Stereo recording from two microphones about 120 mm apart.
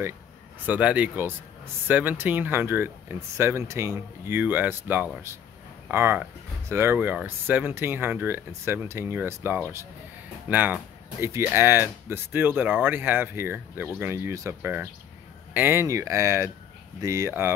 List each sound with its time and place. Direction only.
0.7 s speech: 10° right (ahead or behind)